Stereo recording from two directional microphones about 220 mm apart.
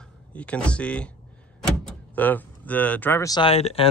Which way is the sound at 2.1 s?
10° left (ahead or behind).